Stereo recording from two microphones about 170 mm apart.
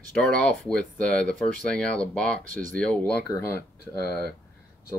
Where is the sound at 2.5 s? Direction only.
50° right (ahead or behind).